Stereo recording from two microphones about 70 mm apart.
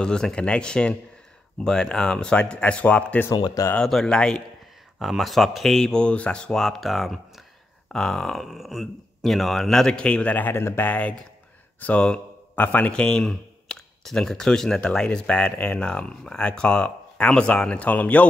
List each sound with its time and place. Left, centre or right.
0.0 s speech: centre
3.3 s speech: left
3.7 s speech: centre
4.9 s speech: centre; by 10.9 s left
10.9 s speech: centre